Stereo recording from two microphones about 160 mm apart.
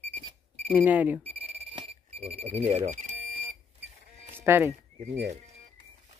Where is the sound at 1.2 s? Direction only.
35° right (ahead or behind).